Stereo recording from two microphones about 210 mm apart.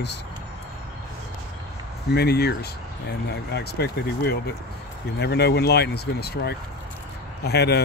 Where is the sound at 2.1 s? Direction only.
50° left (ahead or behind).